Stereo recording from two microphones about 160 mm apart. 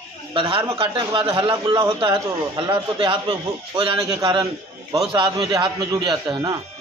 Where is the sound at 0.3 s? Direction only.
30° right (ahead or behind).